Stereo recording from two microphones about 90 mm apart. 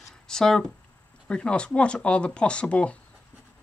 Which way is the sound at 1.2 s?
10° left (ahead or behind).